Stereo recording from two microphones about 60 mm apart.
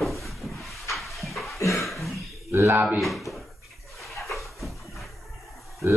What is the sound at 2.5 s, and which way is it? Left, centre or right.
Speech, right.